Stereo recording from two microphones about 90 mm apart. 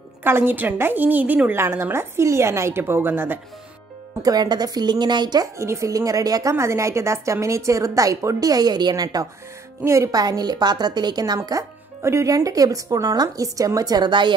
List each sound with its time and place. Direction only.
0.2 s a woman's voice: 25° right (ahead or behind)
4.2 s a woman's voice: 50° right (ahead or behind)
5.6 s a woman's voice: 35° right (ahead or behind); by 11.3 s 50° right (ahead or behind)
12.0 s a woman's voice: 30° right (ahead or behind); by 14.3 s 60° right (ahead or behind)